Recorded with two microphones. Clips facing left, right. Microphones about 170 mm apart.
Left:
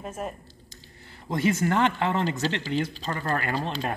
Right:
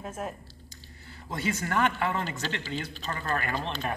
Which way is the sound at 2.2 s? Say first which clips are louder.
Left 7 dB; 40° left (ahead or behind).